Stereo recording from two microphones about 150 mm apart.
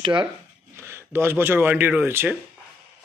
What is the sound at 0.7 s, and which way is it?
Speech, 15° right (ahead or behind).